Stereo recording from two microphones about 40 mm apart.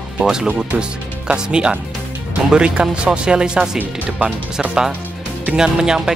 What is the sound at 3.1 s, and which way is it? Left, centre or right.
Speech, right.